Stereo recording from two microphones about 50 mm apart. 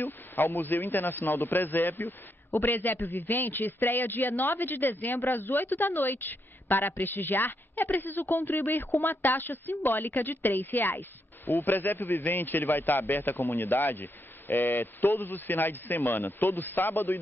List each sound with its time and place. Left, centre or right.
0.6 s a man's voice: left